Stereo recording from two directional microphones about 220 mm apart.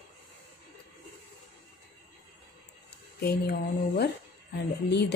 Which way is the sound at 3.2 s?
45° left (ahead or behind).